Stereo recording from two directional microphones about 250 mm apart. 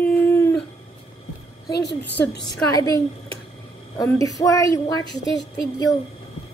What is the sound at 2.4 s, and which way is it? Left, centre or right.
Speech, centre.